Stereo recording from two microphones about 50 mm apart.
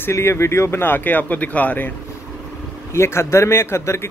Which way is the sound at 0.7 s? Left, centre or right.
Left.